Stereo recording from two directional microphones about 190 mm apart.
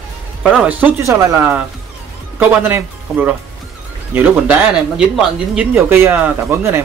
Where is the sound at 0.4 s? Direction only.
Centre (ahead or behind).